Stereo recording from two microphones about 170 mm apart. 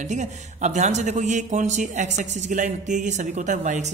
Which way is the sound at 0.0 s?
45° right (ahead or behind).